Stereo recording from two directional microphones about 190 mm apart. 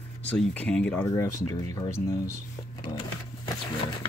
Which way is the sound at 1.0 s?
15° left (ahead or behind).